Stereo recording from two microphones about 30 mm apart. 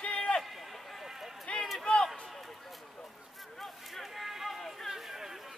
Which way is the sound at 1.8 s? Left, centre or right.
Left.